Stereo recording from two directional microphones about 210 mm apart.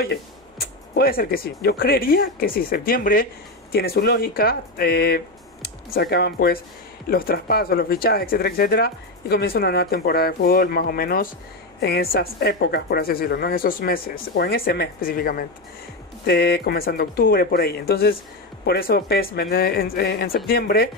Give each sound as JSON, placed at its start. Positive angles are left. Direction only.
{"t": 0.0, "sound": "speech", "side_deg": 50}